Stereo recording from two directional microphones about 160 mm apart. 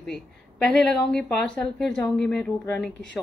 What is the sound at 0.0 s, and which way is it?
A child's voice, 5° left (ahead or behind).